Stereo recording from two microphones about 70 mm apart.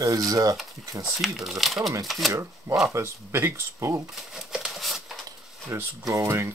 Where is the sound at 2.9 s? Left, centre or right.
Right.